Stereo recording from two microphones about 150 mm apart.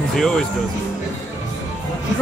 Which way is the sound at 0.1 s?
5° left (ahead or behind).